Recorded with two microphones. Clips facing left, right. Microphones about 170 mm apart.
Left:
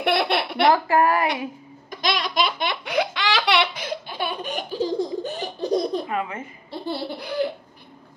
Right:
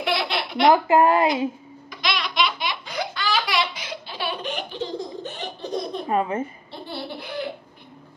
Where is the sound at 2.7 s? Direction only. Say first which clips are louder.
Left 6 dB; 65° left (ahead or behind).